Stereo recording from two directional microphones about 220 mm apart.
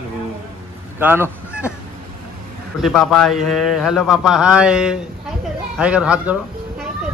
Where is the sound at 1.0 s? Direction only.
10° right (ahead or behind).